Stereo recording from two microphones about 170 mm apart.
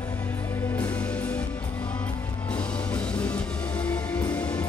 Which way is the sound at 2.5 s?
5° left (ahead or behind).